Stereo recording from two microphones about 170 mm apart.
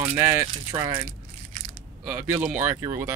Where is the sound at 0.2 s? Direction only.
15° right (ahead or behind).